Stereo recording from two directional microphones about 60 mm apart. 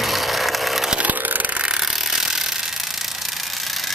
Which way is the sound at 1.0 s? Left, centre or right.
Right.